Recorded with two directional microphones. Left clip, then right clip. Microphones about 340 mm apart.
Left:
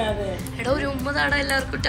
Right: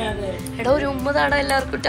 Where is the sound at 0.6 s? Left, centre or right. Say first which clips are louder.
Right 5 dB; centre.